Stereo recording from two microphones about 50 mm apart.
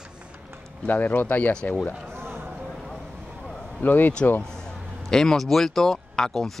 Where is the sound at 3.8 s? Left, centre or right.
Left.